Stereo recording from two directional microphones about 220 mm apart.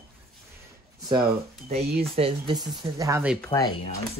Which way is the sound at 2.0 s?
25° right (ahead or behind).